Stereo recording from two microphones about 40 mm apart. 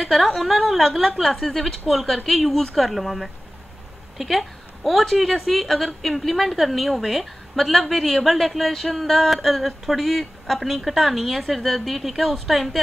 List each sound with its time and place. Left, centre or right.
0.0 s a woman's voice: centre